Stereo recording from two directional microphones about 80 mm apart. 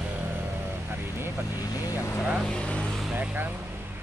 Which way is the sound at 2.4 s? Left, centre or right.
Centre.